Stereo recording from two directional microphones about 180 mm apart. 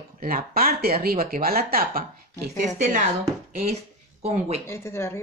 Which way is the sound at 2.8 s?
40° right (ahead or behind).